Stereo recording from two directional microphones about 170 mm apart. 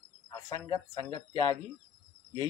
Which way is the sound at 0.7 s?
20° left (ahead or behind).